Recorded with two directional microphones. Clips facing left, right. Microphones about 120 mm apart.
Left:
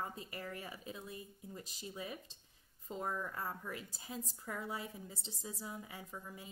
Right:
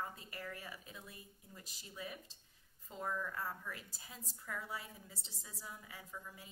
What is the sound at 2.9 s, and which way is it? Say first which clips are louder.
A woman's voice: left 1 dB; 25° left (ahead or behind).